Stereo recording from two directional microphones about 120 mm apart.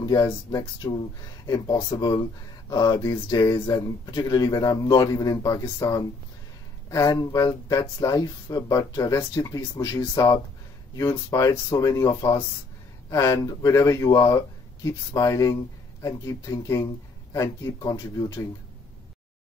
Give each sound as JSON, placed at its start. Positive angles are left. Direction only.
{"t": 0.0, "sound": "speech", "side_deg": 30}